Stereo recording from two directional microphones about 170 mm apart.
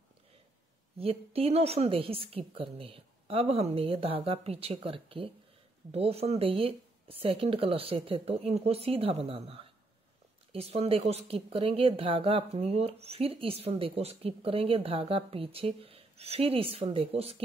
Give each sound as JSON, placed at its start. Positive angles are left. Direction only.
{"t": 0.9, "sound": "speech", "side_deg": -35}